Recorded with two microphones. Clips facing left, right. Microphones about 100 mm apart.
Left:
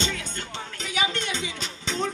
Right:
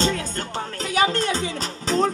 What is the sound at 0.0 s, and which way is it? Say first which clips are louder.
Music: right 7 dB; 35° right (ahead or behind).